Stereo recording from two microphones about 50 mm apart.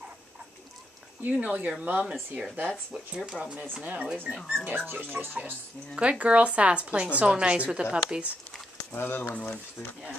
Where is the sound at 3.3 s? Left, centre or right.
Right.